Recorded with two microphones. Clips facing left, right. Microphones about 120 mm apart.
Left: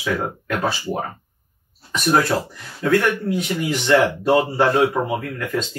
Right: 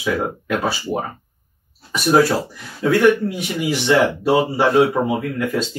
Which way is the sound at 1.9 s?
10° right (ahead or behind).